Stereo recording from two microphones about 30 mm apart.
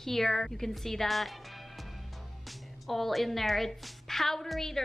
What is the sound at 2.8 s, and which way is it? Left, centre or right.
A woman's voice, centre.